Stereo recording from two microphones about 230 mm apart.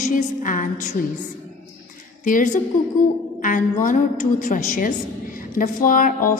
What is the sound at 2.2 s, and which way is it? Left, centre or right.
A woman's voice, left.